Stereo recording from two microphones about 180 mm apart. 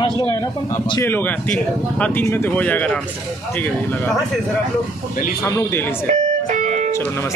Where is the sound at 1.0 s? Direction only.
10° left (ahead or behind).